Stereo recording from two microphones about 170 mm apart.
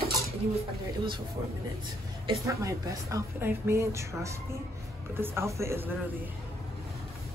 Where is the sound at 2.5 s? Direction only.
20° right (ahead or behind).